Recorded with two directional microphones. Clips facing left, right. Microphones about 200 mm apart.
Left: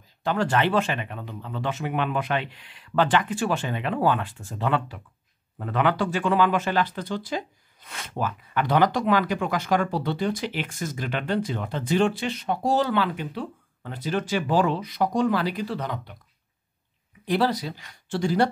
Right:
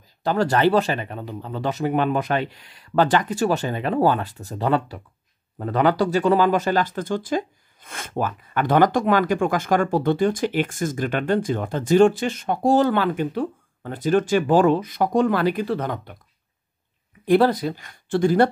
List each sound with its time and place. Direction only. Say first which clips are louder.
0.2 s speech: right 4 dB; 40° right (ahead or behind)
17.2 s speech: right 7 dB; 50° right (ahead or behind)